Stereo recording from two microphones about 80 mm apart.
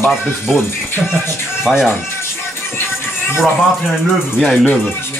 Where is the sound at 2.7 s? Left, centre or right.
Left.